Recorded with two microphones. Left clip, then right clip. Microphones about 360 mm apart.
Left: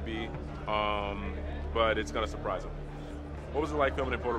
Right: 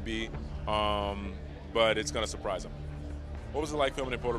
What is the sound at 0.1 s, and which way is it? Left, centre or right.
Speech, right.